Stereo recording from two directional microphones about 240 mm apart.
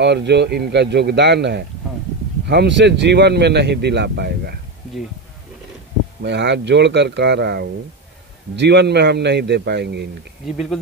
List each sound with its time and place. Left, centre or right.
0.0 s speech: right
6.2 s speech: right